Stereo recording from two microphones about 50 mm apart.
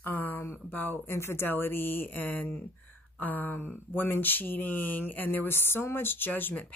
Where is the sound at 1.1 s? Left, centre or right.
Left.